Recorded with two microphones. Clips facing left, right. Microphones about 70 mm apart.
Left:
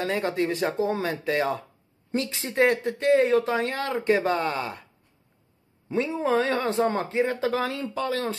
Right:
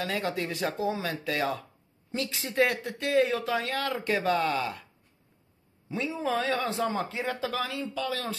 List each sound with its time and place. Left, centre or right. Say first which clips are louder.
0.0 s speech: left 5 dB; left
5.9 s speech: left 6 dB; left
7.1 s speech: left 7 dB; left